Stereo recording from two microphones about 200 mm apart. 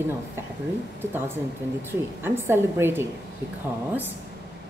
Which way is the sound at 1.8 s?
10° right (ahead or behind).